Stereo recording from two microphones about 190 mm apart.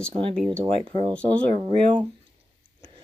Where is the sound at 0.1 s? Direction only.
30° right (ahead or behind).